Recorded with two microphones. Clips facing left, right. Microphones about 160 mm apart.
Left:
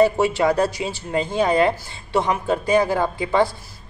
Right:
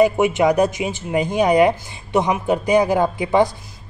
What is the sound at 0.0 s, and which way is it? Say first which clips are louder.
A woman's voice: right 2 dB; 20° right (ahead or behind).